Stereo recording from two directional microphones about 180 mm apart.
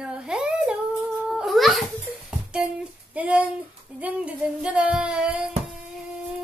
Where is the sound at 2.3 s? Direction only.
5° right (ahead or behind).